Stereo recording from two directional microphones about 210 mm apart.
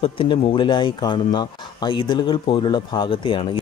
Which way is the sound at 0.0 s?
25° left (ahead or behind).